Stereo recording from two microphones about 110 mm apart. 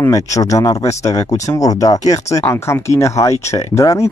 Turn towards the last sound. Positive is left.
turn(degrees=30)  # may be behind; listen again after turning